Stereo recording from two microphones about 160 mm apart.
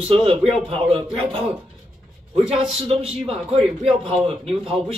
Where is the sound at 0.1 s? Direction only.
35° right (ahead or behind).